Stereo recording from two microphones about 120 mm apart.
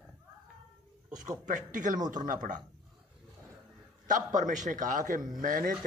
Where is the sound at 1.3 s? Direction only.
90° right.